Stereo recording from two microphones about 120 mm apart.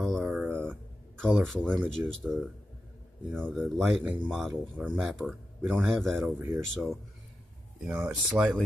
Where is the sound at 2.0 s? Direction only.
15° right (ahead or behind).